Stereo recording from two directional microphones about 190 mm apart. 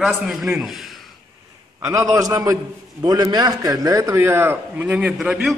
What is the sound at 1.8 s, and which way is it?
A man's voice, 15° right (ahead or behind).